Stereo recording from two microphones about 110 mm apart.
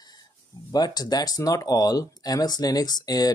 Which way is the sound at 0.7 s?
35° left (ahead or behind).